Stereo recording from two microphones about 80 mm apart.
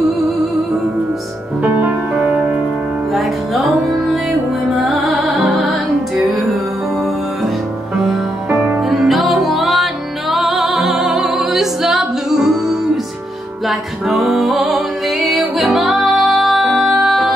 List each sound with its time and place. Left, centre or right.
3.1 s music: centre
8.5 s music: centre
8.8 s music: centre